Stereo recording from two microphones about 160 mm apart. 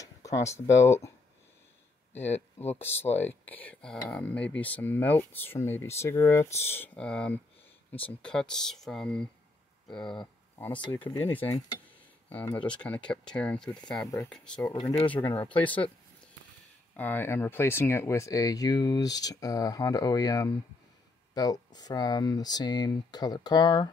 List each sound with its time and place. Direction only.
0.0 s a sound: 20° left (ahead or behind)
0.5 s speech: 15° left (ahead or behind)
2.3 s speech: 40° left (ahead or behind)
2.8 s speech: 15° left (ahead or behind)
10.7 s speech: 30° left (ahead or behind)
11.0 s speech: 10° left (ahead or behind)
14.6 s speech: 20° left (ahead or behind)
15.0 s speech: 30° left (ahead or behind)
15.2 s speech: 10° left (ahead or behind)
16.9 s speech: 10° left (ahead or behind); by 23.9 s 30° left (ahead or behind)